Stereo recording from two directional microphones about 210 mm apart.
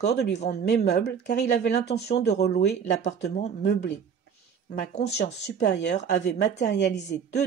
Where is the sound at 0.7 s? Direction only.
50° left (ahead or behind).